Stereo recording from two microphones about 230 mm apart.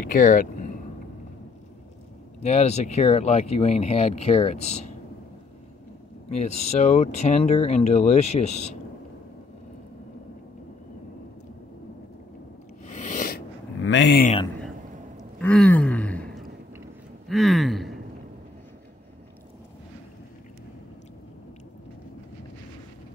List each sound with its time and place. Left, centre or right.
0.0 s speech: left
2.4 s speech: left
6.3 s speech: left
12.9 s sneeze: left
13.7 s speech: left
15.1 s gasp: centre
17.3 s a sound: centre